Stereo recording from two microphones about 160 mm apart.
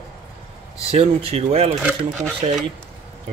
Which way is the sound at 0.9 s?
40° right (ahead or behind).